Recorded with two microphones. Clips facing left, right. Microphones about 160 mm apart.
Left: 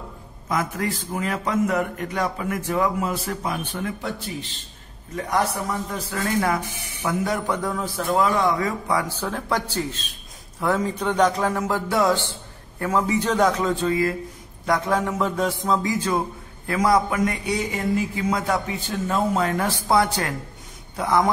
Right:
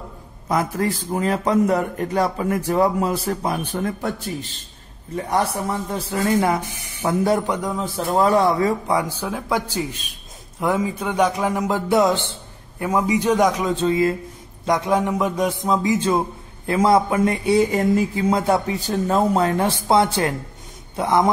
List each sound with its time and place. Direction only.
0.5 s a man's voice: 35° right (ahead or behind)
5.1 s a man's voice: 30° right (ahead or behind)
7.4 s a man's voice: 15° right (ahead or behind)
9.0 s a man's voice: 10° right (ahead or behind)